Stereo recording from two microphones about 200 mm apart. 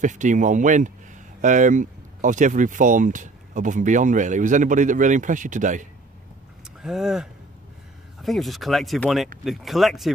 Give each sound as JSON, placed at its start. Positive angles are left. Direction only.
{"t": 0.0, "sound": "speech", "side_deg": -40}
{"t": 6.8, "sound": "speech", "side_deg": 0}